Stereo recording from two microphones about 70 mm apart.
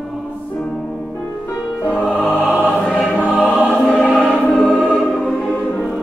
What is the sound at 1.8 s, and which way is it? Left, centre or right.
Music, right.